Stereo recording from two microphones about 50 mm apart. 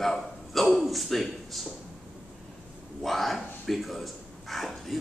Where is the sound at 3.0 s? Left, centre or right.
Centre.